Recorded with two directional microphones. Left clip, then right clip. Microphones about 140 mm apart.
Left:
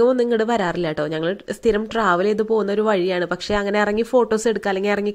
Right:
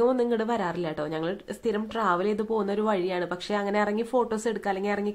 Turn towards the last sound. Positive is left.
turn(degrees=40)  # may be behind; listen again after turning